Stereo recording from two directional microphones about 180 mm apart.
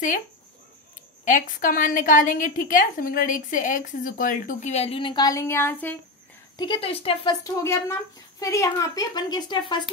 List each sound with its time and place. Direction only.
1.2 s a woman's voice: 50° left (ahead or behind); by 5.9 s 10° left (ahead or behind)
6.6 s speech: 30° left (ahead or behind)
7.4 s a woman's voice: 15° left (ahead or behind)